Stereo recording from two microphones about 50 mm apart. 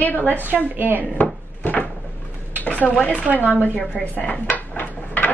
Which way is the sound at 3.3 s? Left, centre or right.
Left.